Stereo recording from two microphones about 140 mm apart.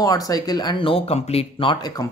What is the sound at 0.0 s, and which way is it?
Speech, 25° left (ahead or behind).